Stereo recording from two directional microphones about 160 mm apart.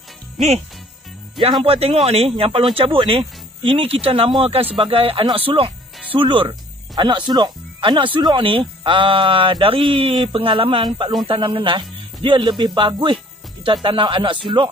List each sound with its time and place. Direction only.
1.4 s speech: 35° right (ahead or behind)